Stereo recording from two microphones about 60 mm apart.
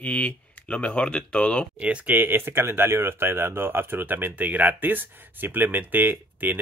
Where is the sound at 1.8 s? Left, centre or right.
Right.